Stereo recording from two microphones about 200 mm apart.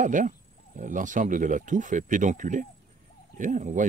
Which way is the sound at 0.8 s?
40° right (ahead or behind).